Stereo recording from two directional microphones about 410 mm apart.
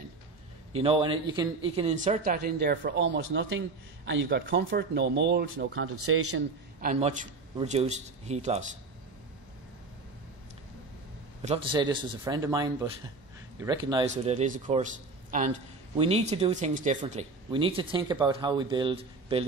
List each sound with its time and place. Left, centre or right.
0.7 s speech: centre; by 6.9 s right
6.9 s a man's voice: centre
11.4 s a man's voice: centre